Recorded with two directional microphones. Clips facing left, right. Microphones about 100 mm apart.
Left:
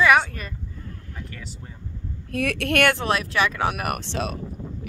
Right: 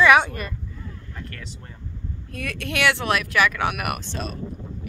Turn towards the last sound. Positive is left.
turn(degrees=80)